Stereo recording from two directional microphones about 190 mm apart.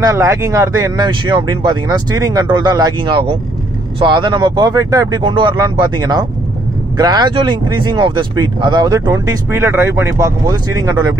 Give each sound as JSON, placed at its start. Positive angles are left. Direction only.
{"t": 0.0, "sound": "speech", "side_deg": -15}